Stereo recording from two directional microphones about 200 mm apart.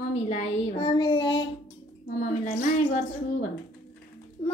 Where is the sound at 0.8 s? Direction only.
25° left (ahead or behind).